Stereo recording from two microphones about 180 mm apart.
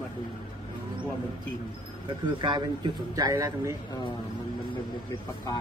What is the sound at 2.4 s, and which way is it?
A man's voice, 25° right (ahead or behind).